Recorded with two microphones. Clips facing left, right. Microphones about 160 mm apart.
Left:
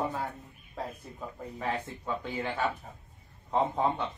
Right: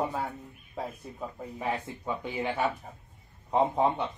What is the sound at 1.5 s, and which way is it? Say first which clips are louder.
A man's voice: right 1 dB; 15° right (ahead or behind).